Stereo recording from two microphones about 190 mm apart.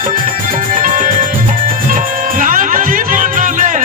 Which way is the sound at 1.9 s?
45° right (ahead or behind).